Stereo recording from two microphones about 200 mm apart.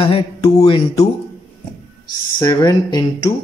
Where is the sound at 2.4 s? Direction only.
20° left (ahead or behind).